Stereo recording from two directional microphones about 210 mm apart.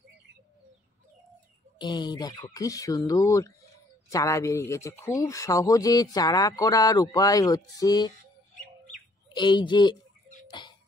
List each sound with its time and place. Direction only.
1.8 s speech: 20° left (ahead or behind)
9.3 s a woman's voice: 20° left (ahead or behind)
10.6 s music: 20° left (ahead or behind)